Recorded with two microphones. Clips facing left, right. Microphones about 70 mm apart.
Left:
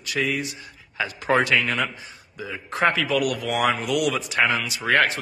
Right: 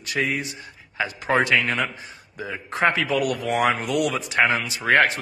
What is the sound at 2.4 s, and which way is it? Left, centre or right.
A man's voice, right.